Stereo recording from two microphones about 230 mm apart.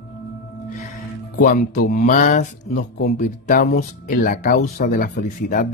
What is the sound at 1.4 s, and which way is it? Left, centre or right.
Speech, left.